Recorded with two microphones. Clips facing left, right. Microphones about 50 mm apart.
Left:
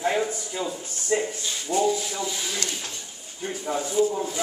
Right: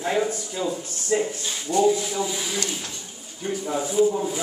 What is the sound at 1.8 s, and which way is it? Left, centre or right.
Speech, centre.